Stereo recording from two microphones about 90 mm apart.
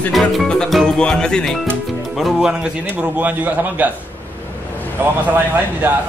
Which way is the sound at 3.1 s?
15° right (ahead or behind).